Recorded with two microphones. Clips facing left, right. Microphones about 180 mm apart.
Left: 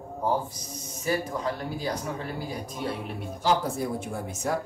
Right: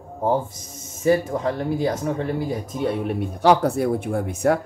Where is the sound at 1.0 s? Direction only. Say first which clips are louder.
Right 9 dB; 50° right (ahead or behind).